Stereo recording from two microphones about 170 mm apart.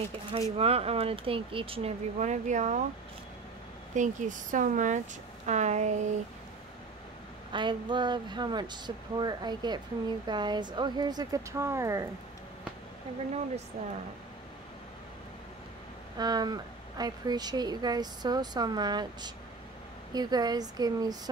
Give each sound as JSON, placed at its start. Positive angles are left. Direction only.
{"t": 0.6, "sound": "speech", "side_deg": -35}
{"t": 3.9, "sound": "speech", "side_deg": -50}
{"t": 7.5, "sound": "speech", "side_deg": -25}
{"t": 13.8, "sound": "speech", "side_deg": -45}
{"t": 16.2, "sound": "speech", "side_deg": -25}